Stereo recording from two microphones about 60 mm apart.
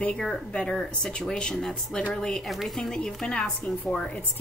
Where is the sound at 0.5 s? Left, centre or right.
Centre.